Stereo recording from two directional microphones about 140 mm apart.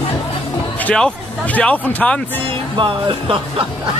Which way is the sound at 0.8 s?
10° left (ahead or behind).